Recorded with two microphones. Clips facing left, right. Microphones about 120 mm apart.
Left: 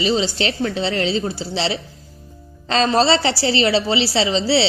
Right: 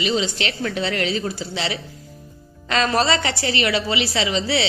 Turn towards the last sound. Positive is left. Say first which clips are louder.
# left 4 dB
turn(degrees=30)  # may be behind; listen again after turning